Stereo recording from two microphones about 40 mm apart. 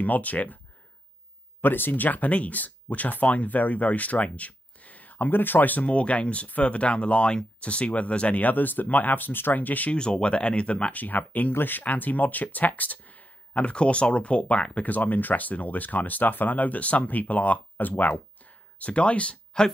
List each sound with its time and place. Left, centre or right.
0.0 s speech: left
1.6 s speech: left
2.0 s speech: left
5.9 s speech: left
8.5 s speech: left
9.9 s speech: left
11.0 s speech: left
11.5 s speech: left
11.8 s speech: left
14.9 s speech: left
18.1 s a sound: left